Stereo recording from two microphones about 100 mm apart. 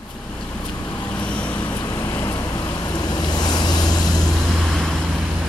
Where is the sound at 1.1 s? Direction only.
10° left (ahead or behind).